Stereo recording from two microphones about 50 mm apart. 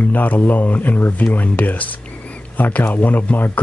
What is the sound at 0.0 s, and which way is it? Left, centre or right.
Speech, left.